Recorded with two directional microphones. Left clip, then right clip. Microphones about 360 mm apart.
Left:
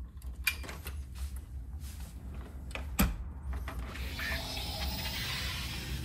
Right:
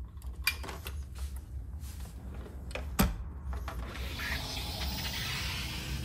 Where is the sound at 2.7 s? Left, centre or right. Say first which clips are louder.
Right 2 dB; right.